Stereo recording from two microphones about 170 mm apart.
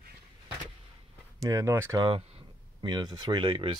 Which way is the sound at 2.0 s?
30° right (ahead or behind).